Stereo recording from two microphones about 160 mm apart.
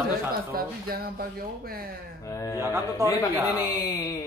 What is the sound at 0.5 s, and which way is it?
Speech, 70° right (ahead or behind).